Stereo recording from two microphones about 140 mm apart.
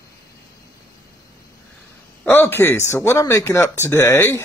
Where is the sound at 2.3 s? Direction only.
15° left (ahead or behind).